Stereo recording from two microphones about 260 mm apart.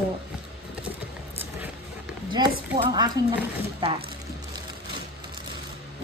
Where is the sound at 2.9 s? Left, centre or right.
Centre.